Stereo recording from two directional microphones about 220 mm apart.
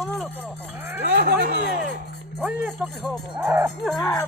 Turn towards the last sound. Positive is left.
turn(degrees=5)  # may be behind; listen again after turning